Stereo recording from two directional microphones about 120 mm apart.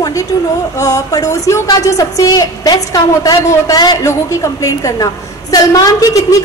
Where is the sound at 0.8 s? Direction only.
30° left (ahead or behind).